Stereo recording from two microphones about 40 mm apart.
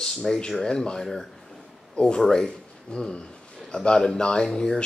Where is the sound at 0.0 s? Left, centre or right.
Centre.